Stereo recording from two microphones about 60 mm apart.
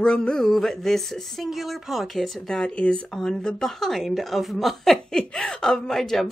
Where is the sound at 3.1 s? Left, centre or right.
Centre.